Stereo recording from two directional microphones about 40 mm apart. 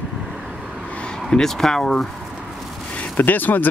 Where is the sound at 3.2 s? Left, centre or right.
Left.